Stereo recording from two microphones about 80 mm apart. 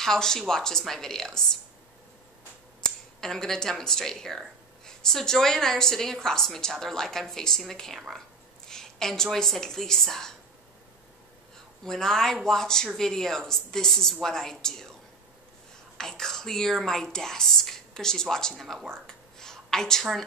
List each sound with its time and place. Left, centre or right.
0.0 s a woman's voice: centre
2.8 s a woman's voice: centre
11.8 s a woman's voice: centre
16.0 s speech: centre
18.9 s a sound: centre